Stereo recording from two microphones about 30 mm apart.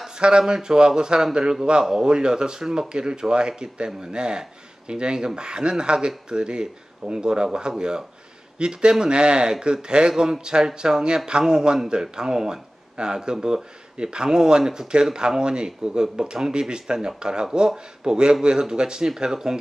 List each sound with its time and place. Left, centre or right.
0.2 s speech: right